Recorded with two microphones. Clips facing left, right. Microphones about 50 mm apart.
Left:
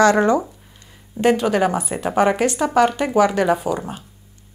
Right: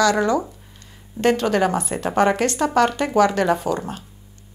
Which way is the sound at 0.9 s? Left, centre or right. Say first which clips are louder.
Left 2 dB; centre.